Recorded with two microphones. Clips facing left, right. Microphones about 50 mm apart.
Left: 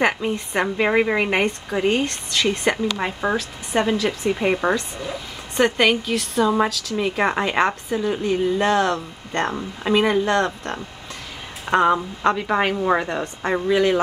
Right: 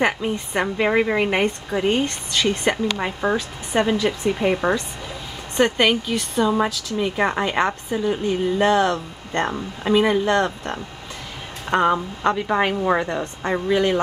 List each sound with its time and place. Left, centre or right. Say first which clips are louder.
0.7 s a woman's voice: even; centre
4.3 s a woman's voice: left 1 dB; centre